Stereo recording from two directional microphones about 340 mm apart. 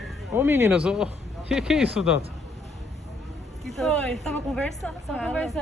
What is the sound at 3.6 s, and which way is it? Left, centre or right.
A woman's voice, centre.